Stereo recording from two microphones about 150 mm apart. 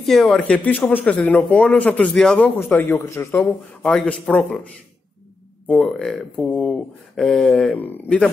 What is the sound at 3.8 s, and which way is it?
Speech, 5° left (ahead or behind).